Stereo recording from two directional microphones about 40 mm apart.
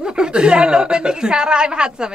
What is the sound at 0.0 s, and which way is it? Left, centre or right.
A woman's voice, right.